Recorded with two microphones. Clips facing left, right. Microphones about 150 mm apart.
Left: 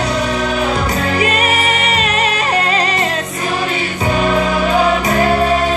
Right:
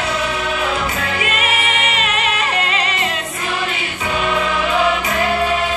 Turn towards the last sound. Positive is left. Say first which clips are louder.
# left 4 dB
turn(degrees=40)  # may be behind; listen again after turning